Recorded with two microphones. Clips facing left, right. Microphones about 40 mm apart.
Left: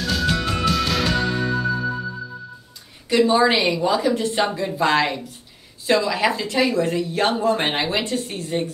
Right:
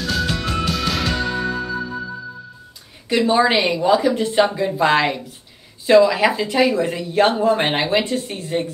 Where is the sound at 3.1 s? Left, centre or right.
Centre.